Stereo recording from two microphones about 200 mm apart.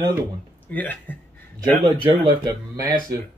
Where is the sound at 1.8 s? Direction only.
25° right (ahead or behind).